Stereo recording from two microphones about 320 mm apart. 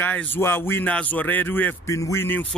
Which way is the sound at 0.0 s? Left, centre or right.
Centre.